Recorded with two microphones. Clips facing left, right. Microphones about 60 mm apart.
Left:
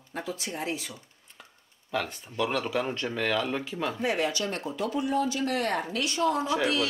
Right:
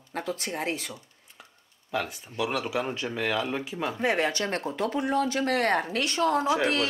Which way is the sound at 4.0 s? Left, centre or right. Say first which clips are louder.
Right 3 dB; right.